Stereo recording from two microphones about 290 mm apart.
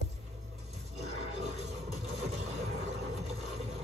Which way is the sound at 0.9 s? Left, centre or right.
Right.